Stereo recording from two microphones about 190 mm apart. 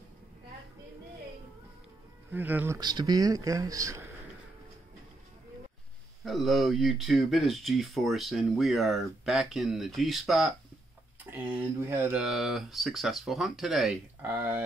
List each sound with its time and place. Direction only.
2.3 s speech: 10° right (ahead or behind)
2.8 s speech: 20° right (ahead or behind)
6.2 s speech: centre (ahead or behind)